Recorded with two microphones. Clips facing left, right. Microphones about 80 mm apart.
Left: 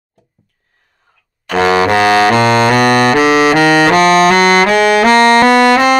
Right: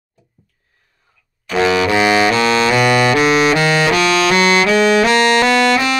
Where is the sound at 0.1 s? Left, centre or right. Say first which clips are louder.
Left 1 dB; left.